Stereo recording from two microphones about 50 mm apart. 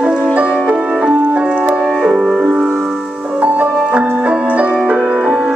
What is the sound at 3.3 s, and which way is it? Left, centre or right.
Music, right.